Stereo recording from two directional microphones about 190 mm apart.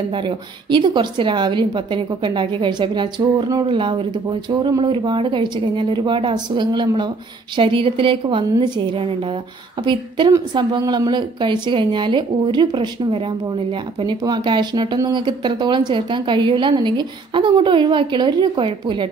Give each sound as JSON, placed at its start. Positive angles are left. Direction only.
{"t": 0.1, "sound": "a woman's voice", "side_deg": -25}